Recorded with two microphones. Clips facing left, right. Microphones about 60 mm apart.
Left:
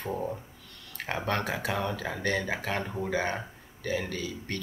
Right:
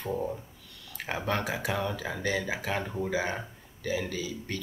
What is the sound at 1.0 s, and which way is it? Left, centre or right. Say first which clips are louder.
Speech: even; centre.